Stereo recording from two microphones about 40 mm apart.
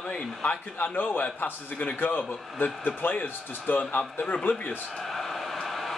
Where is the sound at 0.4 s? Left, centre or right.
Left.